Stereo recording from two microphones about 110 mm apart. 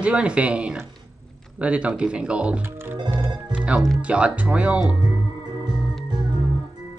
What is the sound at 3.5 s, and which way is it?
Music, 10° right (ahead or behind).